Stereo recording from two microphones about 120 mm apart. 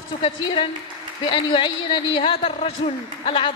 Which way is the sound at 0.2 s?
45° left (ahead or behind).